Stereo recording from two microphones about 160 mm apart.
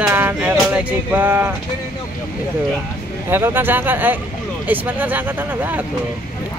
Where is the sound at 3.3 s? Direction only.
15° right (ahead or behind).